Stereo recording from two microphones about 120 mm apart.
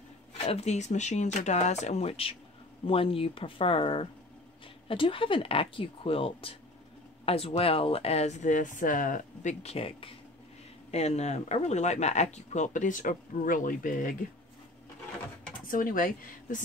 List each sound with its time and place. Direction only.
0.4 s speech: 60° left (ahead or behind)
10.9 s speech: 60° left (ahead or behind); by 13.9 s 90° left
16.0 s speech: 90° left